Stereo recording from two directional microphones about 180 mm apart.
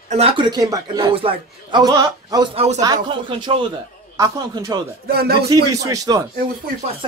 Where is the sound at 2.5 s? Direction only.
40° right (ahead or behind).